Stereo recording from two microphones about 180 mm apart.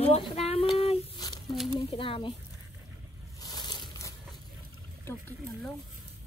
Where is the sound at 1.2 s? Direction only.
25° left (ahead or behind).